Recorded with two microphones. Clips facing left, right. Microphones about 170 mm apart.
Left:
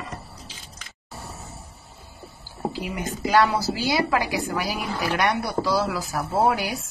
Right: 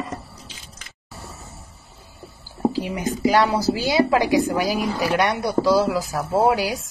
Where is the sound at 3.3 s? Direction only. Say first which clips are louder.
Even; 15° right (ahead or behind).